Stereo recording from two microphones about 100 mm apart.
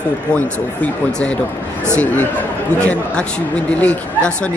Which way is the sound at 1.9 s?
15° left (ahead or behind).